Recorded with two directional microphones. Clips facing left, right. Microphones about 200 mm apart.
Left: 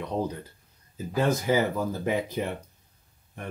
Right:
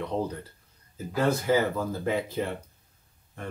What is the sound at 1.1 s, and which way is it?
Speech, 15° left (ahead or behind).